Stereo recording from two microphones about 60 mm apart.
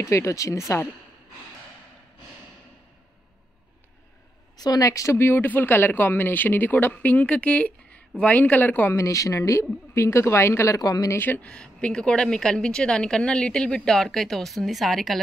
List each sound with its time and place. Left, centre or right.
0.0 s speech: left
4.6 s speech: left
5.2 s speech: left
8.9 s speech: left
9.9 s speech: left
10.7 s speech: left
11.1 s speech: left
11.4 s a woman's voice: centre